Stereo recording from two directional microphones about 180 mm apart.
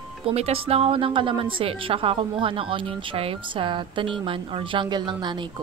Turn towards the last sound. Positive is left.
turn(degrees=-25)  # may be behind; listen again after turning